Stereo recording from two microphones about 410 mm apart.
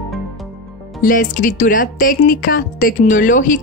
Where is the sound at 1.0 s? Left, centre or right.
Centre.